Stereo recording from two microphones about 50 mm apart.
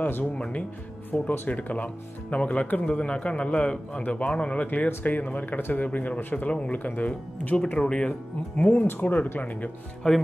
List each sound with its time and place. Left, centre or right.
0.0 s a man's voice: left; by 1.3 s centre
1.5 s a man's voice: left
4.6 s a man's voice: left
8.8 s speech: left
10.0 s a man's voice: centre